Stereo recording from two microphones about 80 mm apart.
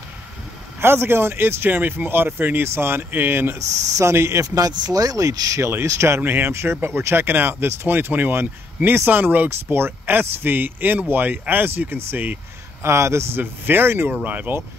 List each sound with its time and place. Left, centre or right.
0.7 s speech: right
3.5 s speech: right
5.6 s speech: right
12.8 s speech: right